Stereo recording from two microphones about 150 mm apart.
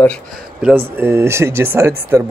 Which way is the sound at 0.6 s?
10° right (ahead or behind).